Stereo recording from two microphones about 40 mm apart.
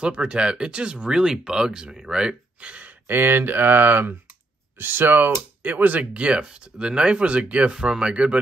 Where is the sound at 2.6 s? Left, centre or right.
Right.